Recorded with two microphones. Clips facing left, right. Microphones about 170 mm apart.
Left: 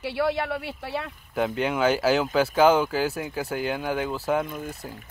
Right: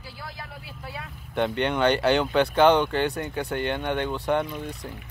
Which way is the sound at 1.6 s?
5° left (ahead or behind).